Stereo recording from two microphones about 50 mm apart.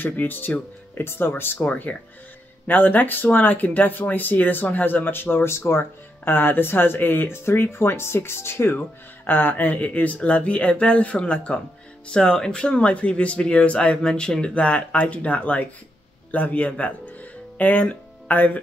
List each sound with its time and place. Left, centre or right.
0.0 s speech: left
0.9 s speech: left
1.7 s speech: left
8.7 s speech: left
14.0 s speech: centre; by 18.6 s left